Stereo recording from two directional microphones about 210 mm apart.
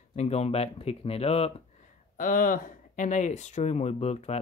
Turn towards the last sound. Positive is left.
turn(degrees=30)  # may be behind; listen again after turning